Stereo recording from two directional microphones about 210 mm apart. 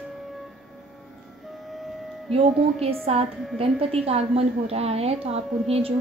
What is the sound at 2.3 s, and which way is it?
A woman's voice, 30° right (ahead or behind).